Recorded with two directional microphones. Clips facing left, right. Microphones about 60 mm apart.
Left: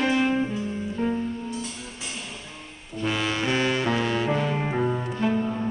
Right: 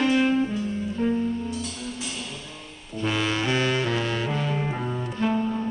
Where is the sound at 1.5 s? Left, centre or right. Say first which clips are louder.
Right 2 dB; left.